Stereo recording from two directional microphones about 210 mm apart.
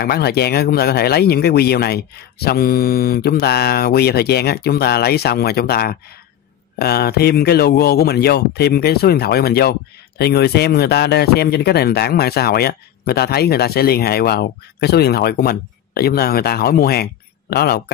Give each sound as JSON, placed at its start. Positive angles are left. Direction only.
{"t": 0.0, "sound": "speech", "side_deg": 50}